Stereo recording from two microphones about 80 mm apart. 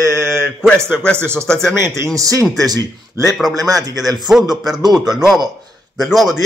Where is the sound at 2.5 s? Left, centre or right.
Right.